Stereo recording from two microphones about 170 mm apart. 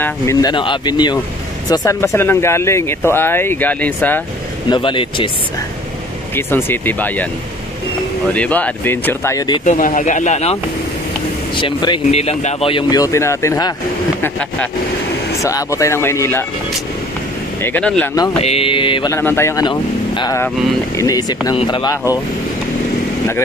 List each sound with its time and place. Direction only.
0.0 s speech: 20° left (ahead or behind)
4.6 s speech: 30° left (ahead or behind)
6.3 s speech: 10° left (ahead or behind)
8.3 s speech: 10° left (ahead or behind)
9.7 s speech: 50° left (ahead or behind)
11.5 s speech: 30° left (ahead or behind)
15.4 s speech: 20° left (ahead or behind)
17.6 s speech: 10° left (ahead or behind)
18.4 s mantra: 35° left (ahead or behind)
19.0 s speech: 15° left (ahead or behind)